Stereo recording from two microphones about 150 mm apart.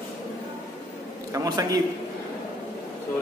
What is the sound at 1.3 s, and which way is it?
Speech, 25° right (ahead or behind).